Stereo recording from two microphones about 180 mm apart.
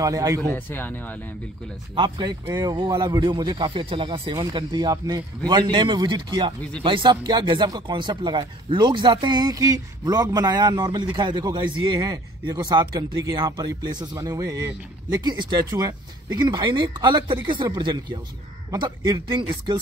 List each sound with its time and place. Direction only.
0.0 s speech: 20° right (ahead or behind)
0.5 s speech: 10° left (ahead or behind)
2.0 s speech: 25° right (ahead or behind)